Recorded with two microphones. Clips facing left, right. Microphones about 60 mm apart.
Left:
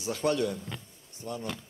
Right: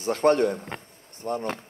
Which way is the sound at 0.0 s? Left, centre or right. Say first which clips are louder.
Right 8 dB; right.